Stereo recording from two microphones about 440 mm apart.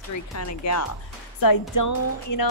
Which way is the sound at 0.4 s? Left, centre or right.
Left.